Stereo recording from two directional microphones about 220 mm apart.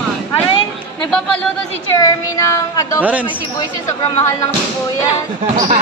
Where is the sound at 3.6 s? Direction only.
10° left (ahead or behind).